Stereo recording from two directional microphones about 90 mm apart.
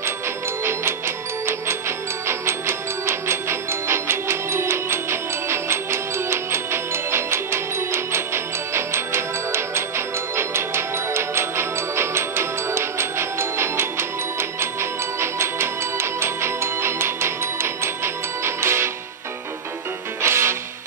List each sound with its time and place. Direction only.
0.7 s music: 30° right (ahead or behind)
20.2 s music: 30° right (ahead or behind)